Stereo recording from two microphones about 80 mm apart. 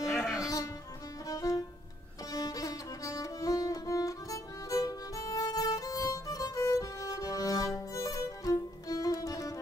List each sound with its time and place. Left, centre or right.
0.0 s music: centre
1.3 s music: left